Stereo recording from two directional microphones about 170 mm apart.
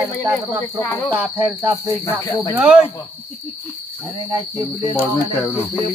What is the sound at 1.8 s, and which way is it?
Cricket, 20° left (ahead or behind).